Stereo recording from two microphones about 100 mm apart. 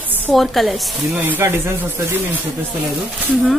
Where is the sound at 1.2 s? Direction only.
20° right (ahead or behind).